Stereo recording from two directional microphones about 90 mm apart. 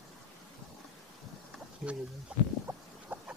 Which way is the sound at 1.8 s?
15° right (ahead or behind).